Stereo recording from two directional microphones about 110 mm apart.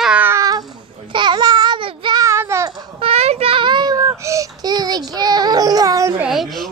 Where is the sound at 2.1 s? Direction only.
25° right (ahead or behind).